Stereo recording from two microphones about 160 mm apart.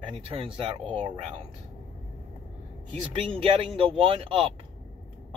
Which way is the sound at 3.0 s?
35° right (ahead or behind).